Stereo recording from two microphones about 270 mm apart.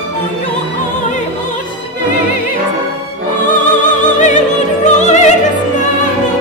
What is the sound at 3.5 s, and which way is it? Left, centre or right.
Music, left.